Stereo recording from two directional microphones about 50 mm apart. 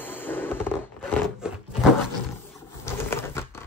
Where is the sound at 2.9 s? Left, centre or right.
Left.